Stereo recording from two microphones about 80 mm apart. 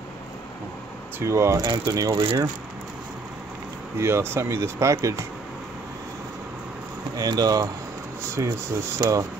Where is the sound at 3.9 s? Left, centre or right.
Right.